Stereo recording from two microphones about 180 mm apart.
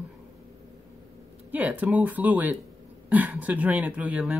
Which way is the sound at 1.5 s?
10° right (ahead or behind).